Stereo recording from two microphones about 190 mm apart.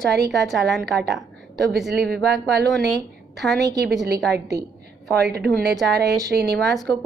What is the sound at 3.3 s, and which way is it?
Speech, centre (ahead or behind).